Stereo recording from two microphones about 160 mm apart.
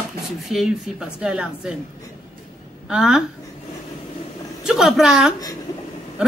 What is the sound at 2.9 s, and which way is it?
Speech, 5° right (ahead or behind).